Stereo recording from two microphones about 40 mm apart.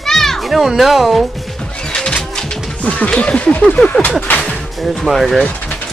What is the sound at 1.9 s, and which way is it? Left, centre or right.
Music, left.